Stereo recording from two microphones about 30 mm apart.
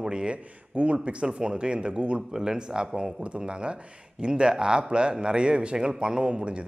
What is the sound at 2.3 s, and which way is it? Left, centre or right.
Speech, right.